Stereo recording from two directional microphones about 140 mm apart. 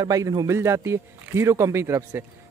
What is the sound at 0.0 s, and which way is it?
Speech, 25° right (ahead or behind).